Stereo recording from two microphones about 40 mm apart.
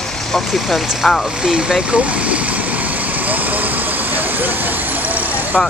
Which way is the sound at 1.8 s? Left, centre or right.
Right.